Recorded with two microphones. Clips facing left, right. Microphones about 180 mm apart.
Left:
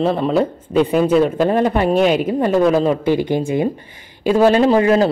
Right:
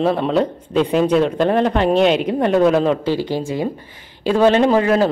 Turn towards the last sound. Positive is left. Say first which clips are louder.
# left 1 dB
turn(degrees=10)  # may be behind; listen again after turning